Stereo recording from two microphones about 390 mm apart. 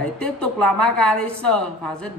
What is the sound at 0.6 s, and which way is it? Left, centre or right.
Speech, left.